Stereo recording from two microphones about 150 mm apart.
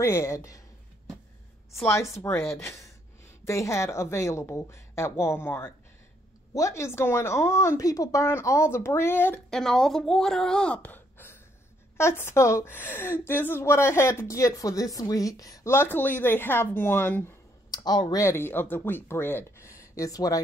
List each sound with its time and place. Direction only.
0.0 s speech: 20° left (ahead or behind)
1.7 s a woman's voice: 20° left (ahead or behind)
9.6 s a woman's voice: centre (ahead or behind)
17.6 s a woman's voice: 25° left (ahead or behind)